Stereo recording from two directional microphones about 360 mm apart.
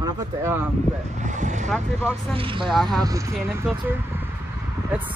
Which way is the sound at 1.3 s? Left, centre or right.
Centre.